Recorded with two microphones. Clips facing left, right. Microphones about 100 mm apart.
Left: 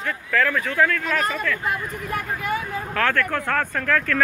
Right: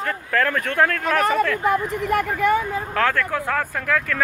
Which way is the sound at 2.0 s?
75° right (ahead or behind).